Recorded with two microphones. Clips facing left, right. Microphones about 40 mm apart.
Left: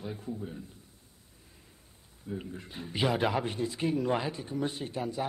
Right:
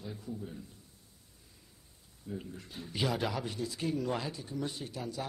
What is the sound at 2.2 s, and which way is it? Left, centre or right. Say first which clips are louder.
Speech: left 3 dB; left.